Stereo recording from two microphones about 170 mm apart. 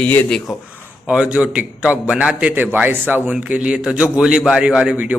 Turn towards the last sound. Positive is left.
turn(degrees=-10)  # may be behind; listen again after turning